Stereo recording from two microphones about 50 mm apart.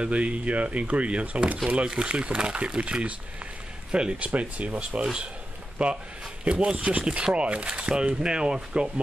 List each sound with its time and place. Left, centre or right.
0.0 s speech: right